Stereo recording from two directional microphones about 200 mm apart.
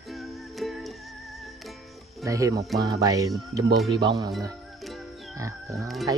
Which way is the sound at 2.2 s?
15° right (ahead or behind).